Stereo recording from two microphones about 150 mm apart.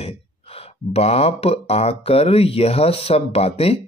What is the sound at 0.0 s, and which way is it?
Speech, 40° left (ahead or behind).